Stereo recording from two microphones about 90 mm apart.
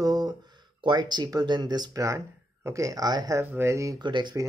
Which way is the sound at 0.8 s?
55° right (ahead or behind).